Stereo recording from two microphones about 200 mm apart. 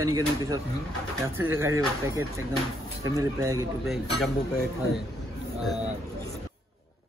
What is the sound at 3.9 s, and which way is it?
Speech, centre (ahead or behind).